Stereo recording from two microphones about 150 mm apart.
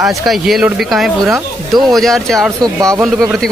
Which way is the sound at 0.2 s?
Centre (ahead or behind).